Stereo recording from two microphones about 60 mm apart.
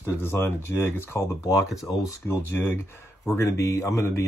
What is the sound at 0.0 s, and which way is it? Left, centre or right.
Speech, left.